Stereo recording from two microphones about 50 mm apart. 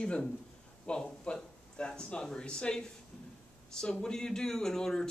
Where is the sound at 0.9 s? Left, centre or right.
Centre.